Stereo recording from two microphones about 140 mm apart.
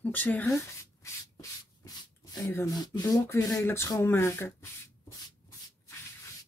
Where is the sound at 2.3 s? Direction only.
25° left (ahead or behind).